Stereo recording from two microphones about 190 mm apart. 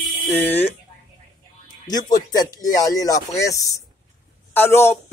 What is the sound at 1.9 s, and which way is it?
Speech, 20° left (ahead or behind).